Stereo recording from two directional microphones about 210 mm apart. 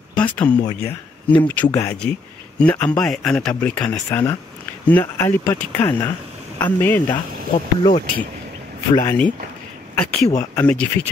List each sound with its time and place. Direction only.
0.1 s a sound: 5° left (ahead or behind)
0.7 s speech: 20° left (ahead or behind)
1.5 s speech: 10° left (ahead or behind)
7.1 s speech: 25° left (ahead or behind)
8.9 s speech: 15° left (ahead or behind)